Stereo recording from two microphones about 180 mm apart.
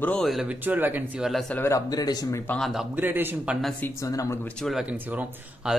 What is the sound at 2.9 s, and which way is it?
Speech, 10° right (ahead or behind).